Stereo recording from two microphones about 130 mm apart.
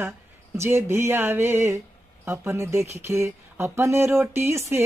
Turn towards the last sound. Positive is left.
turn(degrees=-20)  # may be behind; listen again after turning